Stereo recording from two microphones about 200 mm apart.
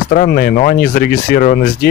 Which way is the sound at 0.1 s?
45° left (ahead or behind).